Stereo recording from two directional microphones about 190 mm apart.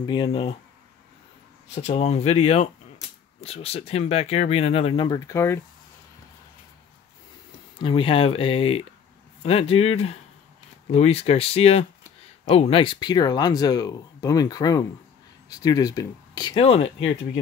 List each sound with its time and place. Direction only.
0.0 s speech: 25° left (ahead or behind)
1.8 s speech: 35° left (ahead or behind); by 5.6 s 15° left (ahead or behind)
7.8 s speech: 25° left (ahead or behind)